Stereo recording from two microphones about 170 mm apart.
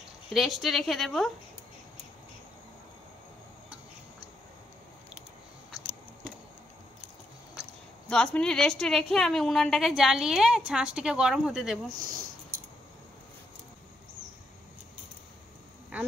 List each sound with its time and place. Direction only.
0.3 s a woman's voice: centre (ahead or behind)
8.1 s a woman's voice: 5° left (ahead or behind)
12.0 s speech: 60° right (ahead or behind)